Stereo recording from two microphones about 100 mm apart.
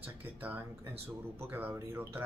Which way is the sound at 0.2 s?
20° right (ahead or behind).